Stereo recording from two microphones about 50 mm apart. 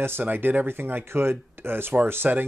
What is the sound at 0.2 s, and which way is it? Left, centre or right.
Speech, right.